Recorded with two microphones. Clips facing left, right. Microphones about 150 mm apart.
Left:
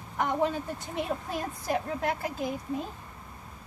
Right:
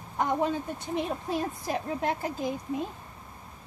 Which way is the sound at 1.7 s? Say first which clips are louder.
Left 2 dB; 20° right (ahead or behind).